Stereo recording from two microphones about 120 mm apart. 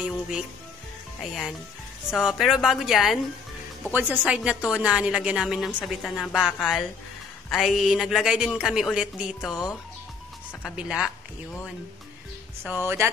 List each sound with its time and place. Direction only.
0.0 s speech: 5° right (ahead or behind)
3.9 s a woman's voice: 10° right (ahead or behind)
6.0 s a woman's voice: 5° left (ahead or behind)
12.6 s speech: 20° right (ahead or behind)